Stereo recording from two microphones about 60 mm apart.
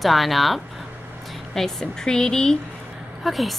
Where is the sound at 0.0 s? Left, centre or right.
Centre.